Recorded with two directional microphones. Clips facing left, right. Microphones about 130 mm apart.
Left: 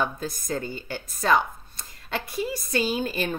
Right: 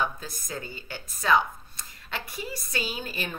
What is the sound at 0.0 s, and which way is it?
Speech, 45° left (ahead or behind).